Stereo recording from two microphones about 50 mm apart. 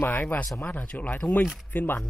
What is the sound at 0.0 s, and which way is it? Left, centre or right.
Speech, left.